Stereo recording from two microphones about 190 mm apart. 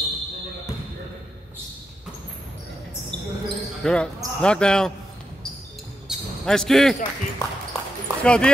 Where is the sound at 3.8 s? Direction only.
5° left (ahead or behind).